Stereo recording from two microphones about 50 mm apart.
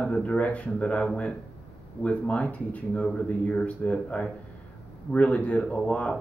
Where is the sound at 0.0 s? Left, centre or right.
Left.